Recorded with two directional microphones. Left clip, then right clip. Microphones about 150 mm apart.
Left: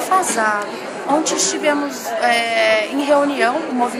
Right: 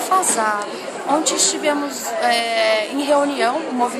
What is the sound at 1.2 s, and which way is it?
Speech, 45° right (ahead or behind).